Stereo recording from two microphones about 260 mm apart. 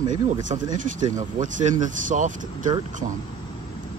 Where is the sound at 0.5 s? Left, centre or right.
Right.